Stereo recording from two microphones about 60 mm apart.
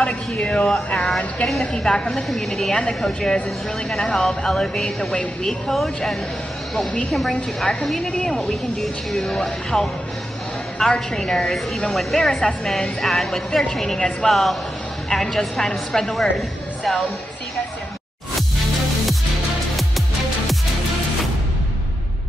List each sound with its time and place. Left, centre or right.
0.0 s a woman's voice: centre
10.9 s a woman's voice: centre